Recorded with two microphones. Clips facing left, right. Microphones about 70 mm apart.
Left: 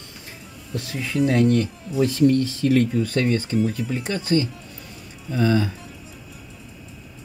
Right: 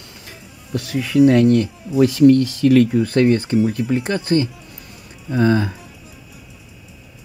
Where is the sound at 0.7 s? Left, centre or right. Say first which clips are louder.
Right 8 dB; right.